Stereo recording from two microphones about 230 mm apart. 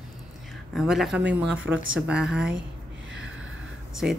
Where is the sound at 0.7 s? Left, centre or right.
Centre.